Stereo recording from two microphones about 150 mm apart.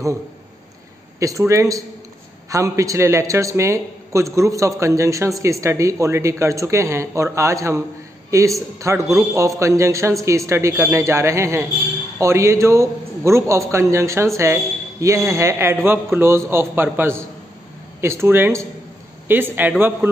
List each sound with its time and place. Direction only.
1.5 s a man's voice: 20° right (ahead or behind)